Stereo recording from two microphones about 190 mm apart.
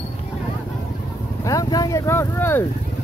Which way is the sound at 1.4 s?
20° left (ahead or behind).